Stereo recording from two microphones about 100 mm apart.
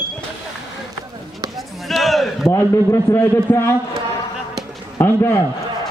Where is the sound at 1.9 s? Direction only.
Centre (ahead or behind).